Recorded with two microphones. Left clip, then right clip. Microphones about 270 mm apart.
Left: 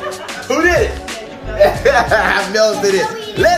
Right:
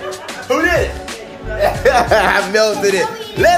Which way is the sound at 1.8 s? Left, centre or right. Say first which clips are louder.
Even; right.